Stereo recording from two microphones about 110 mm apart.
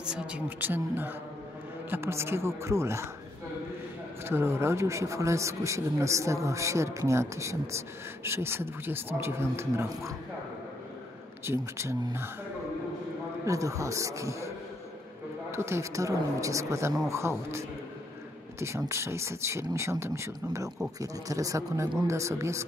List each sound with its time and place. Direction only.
0.1 s a woman's voice: 15° right (ahead or behind)
4.3 s speech: 20° right (ahead or behind)
11.4 s speech: 25° right (ahead or behind)
13.5 s speech: 30° right (ahead or behind)
15.5 s speech: 25° right (ahead or behind)
18.9 s speech: 25° right (ahead or behind)